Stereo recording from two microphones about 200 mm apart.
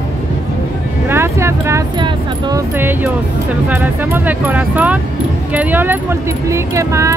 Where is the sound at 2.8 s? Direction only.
10° right (ahead or behind).